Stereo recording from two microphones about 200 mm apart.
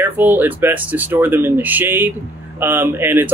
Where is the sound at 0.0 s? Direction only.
10° right (ahead or behind).